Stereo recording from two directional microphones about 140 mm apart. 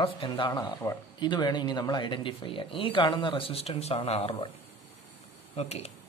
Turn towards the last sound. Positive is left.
turn(degrees=50)  # may be behind; listen again after turning